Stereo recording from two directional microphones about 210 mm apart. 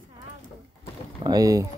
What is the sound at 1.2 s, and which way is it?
Speech, 15° right (ahead or behind).